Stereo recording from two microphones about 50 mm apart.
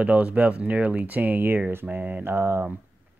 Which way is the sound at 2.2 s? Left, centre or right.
Right.